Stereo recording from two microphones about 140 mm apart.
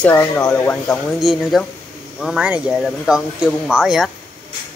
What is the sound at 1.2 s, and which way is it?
Speech, centre (ahead or behind).